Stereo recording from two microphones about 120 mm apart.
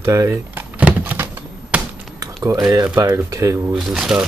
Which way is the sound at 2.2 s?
25° right (ahead or behind).